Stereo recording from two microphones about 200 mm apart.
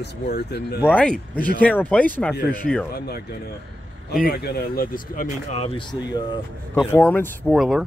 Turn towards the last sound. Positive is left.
turn(degrees=0)  # may be behind; listen again after turning